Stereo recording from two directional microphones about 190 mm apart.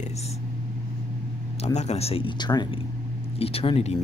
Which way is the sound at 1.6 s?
35° left (ahead or behind).